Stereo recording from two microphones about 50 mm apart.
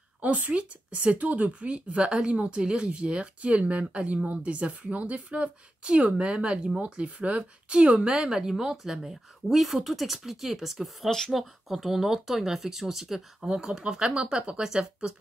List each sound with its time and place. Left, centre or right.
0.2 s speech: right; by 11.1 s centre
11.1 s speech: centre
11.3 s speech: centre